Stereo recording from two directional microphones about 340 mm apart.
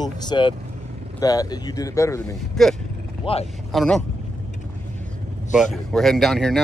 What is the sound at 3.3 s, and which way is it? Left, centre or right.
Speech, centre.